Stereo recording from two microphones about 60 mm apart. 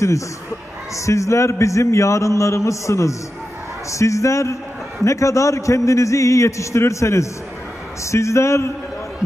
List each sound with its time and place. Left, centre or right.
0.9 s a man's voice: left